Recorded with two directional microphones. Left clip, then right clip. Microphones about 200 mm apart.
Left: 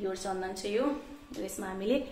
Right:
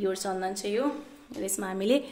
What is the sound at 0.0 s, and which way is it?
Speech, 55° right (ahead or behind).